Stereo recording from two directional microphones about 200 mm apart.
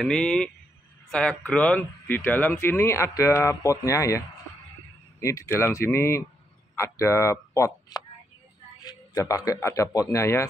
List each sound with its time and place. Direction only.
0.0 s speech: 5° left (ahead or behind)
5.2 s speech: 15° left (ahead or behind)